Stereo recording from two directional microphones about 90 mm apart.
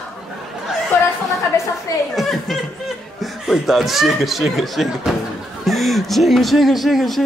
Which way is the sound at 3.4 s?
Centre (ahead or behind).